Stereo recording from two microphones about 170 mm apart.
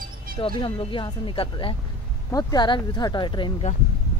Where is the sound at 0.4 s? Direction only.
25° left (ahead or behind).